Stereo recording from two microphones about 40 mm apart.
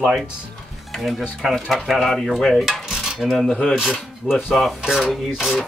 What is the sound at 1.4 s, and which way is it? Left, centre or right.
Speech, centre.